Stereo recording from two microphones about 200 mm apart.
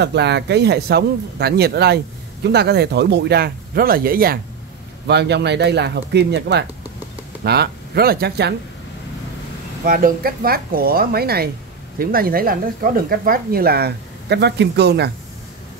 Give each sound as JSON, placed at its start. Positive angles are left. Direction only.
{"t": 0.0, "sound": "speech", "side_deg": -60}
{"t": 9.8, "sound": "speech", "side_deg": -45}